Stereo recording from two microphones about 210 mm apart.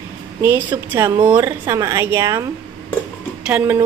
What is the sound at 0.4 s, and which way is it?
Speech, 10° right (ahead or behind).